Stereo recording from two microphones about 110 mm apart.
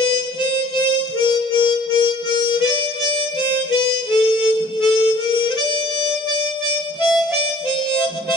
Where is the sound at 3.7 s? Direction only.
45° left (ahead or behind).